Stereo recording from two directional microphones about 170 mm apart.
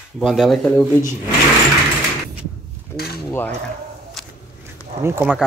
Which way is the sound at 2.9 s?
65° left (ahead or behind).